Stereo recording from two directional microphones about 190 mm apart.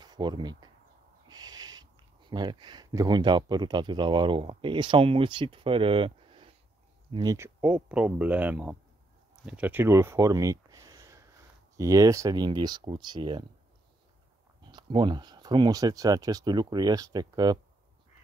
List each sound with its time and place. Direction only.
0.0 s speech: 20° right (ahead or behind)
9.3 s a sound: 5° right (ahead or behind)
11.7 s speech: 15° right (ahead or behind)
14.7 s speech: 25° right (ahead or behind)